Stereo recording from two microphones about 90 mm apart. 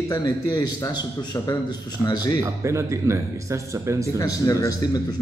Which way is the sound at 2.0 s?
50° left (ahead or behind).